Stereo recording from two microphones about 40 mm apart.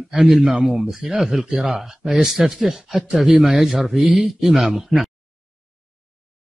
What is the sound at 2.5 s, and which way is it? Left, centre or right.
Speech, centre.